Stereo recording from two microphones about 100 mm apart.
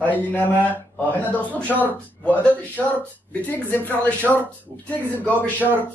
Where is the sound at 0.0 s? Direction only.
15° left (ahead or behind).